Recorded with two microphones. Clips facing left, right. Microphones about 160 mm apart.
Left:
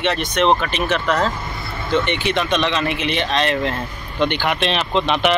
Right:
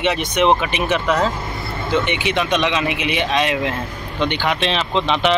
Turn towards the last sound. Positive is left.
turn(degrees=10)  # may be behind; listen again after turning